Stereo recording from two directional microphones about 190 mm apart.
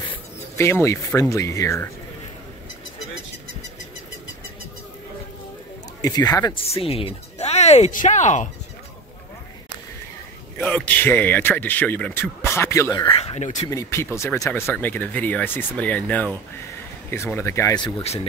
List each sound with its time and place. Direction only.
0.6 s speech: 15° left (ahead or behind)
6.0 s speech: 20° left (ahead or behind); by 8.5 s 40° left (ahead or behind)
10.6 s speech: 10° left (ahead or behind)
13.2 s speech: 35° left (ahead or behind)
13.7 s speech: 15° left (ahead or behind); by 18.2 s 30° left (ahead or behind)